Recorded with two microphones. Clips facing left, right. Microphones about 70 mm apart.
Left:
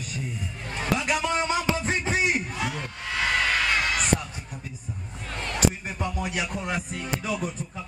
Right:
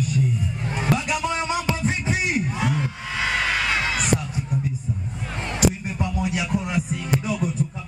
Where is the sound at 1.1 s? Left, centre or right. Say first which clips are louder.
Right 1 dB; left.